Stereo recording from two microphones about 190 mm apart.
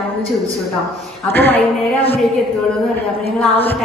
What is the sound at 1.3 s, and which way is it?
Speech, 10° left (ahead or behind).